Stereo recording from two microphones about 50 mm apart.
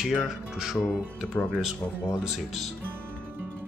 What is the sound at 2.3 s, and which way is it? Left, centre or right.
Speech, centre.